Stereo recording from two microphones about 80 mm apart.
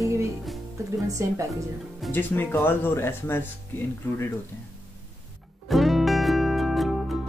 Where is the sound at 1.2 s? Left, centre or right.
Right.